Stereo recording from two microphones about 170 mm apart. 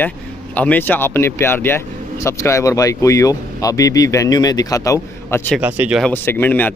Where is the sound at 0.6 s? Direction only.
10° left (ahead or behind).